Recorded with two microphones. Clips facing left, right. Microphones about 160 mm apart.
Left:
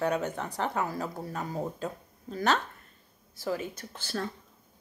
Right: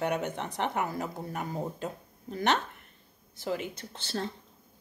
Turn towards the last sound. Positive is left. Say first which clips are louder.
# even
turn(degrees=-25)  # may be behind; listen again after turning